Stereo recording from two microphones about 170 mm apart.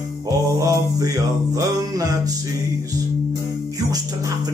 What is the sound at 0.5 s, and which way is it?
Music, 20° right (ahead or behind).